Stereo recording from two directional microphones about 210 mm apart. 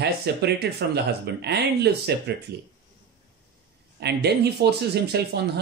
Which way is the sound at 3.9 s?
50° right (ahead or behind).